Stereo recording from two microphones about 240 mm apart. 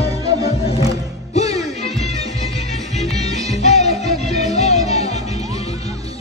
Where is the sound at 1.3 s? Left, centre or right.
Left.